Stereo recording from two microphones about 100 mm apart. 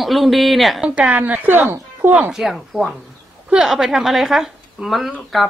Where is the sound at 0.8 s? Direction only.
10° right (ahead or behind).